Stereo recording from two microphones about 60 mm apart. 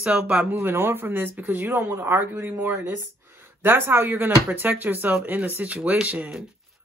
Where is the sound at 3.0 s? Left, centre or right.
Right.